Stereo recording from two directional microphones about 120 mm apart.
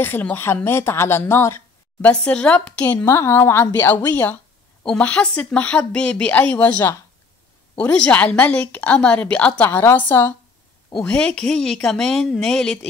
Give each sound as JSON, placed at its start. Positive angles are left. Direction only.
{"t": 0.0, "sound": "a woman's voice", "side_deg": 15}
{"t": 2.0, "sound": "a woman's voice", "side_deg": 10}
{"t": 7.7, "sound": "a woman's voice", "side_deg": 10}